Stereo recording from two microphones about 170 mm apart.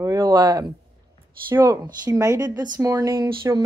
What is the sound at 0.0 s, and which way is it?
Speech, 20° right (ahead or behind).